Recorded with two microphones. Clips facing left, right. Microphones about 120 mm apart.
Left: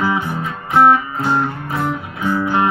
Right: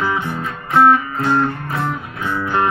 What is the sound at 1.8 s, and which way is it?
Music, 5° left (ahead or behind).